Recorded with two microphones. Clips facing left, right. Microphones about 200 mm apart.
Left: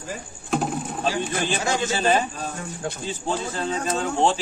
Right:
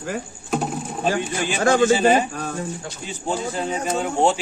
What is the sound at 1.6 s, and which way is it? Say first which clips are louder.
Speech: right 9 dB; 55° right (ahead or behind).